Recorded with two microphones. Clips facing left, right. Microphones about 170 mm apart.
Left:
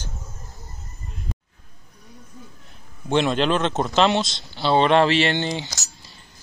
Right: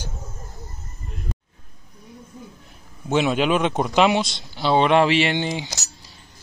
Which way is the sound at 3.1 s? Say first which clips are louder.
Even; 5° right (ahead or behind).